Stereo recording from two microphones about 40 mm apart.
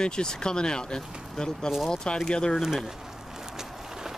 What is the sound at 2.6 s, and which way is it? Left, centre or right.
Speech, centre.